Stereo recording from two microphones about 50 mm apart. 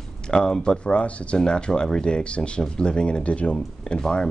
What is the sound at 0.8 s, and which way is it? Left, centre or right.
Speech, left.